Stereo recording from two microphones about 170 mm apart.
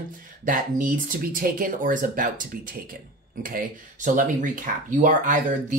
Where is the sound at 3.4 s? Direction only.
50° right (ahead or behind).